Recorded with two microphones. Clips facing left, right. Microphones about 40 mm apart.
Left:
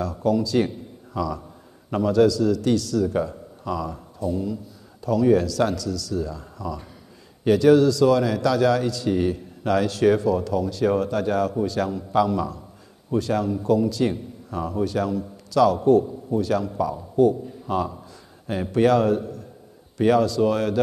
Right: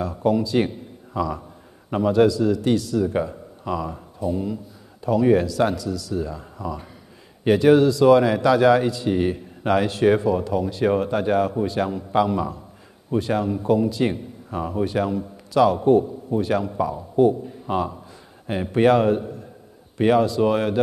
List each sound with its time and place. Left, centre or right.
0.0 s a man's voice: right
0.7 s a sound: right
1.9 s a man's voice: right